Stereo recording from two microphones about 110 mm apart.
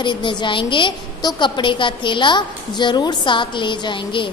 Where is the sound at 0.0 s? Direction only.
45° left (ahead or behind).